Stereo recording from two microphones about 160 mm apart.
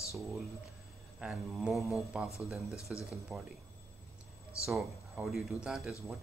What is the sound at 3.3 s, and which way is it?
Speech, 10° right (ahead or behind).